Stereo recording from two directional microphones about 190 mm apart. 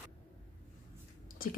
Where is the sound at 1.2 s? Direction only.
50° left (ahead or behind).